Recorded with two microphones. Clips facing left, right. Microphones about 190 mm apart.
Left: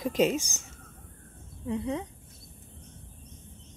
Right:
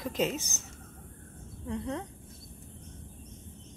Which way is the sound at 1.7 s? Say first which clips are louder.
Left 4 dB; 5° left (ahead or behind).